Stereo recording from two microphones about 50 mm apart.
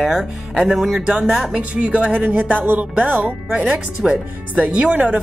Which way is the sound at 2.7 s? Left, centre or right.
Right.